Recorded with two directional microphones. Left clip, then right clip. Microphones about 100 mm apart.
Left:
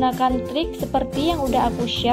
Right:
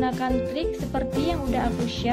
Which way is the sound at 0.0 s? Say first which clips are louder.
Left 5 dB; 40° left (ahead or behind).